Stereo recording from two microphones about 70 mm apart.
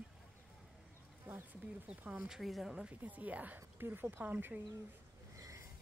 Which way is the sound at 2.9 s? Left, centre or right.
Right.